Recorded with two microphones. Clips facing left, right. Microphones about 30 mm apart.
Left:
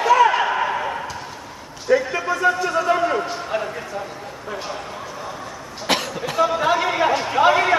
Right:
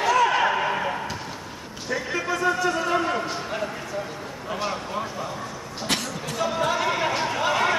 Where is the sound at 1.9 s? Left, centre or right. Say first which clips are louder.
Left 11 dB; left.